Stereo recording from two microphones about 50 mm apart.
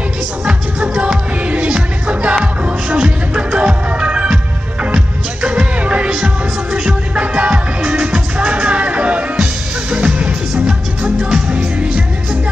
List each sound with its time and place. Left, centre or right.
0.5 s music: right
6.1 s music: centre
7.2 s music: right
9.8 s music: centre